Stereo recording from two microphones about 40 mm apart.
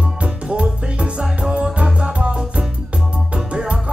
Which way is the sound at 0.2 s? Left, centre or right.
Right.